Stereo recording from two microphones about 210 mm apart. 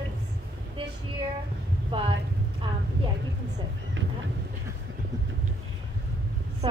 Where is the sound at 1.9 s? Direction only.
25° right (ahead or behind).